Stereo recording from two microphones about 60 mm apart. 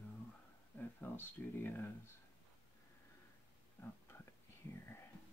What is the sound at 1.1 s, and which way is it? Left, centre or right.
Speech, left.